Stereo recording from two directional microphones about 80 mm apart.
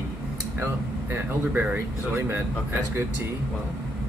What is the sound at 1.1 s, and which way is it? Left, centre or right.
Speech, right.